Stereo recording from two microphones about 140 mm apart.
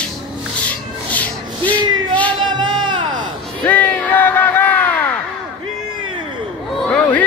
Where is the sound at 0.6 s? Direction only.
10° left (ahead or behind).